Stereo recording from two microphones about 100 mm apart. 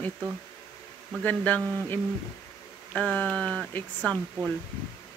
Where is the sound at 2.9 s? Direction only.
10° left (ahead or behind).